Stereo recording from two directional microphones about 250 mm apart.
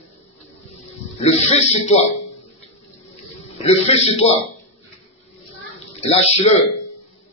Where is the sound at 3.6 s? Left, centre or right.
Left.